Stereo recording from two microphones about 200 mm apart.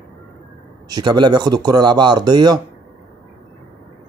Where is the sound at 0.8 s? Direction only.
20° right (ahead or behind).